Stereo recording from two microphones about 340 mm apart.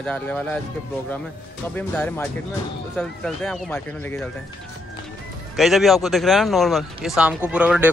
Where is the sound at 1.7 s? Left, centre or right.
Centre.